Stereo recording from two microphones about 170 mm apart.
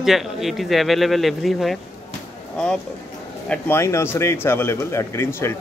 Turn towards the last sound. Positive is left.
turn(degrees=15)  # may be behind; listen again after turning